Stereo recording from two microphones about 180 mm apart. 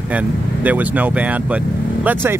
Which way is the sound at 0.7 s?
10° right (ahead or behind).